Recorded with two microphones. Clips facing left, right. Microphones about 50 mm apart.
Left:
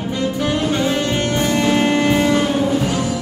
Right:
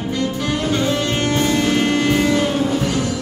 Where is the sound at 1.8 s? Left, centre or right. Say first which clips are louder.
Left 1 dB; left.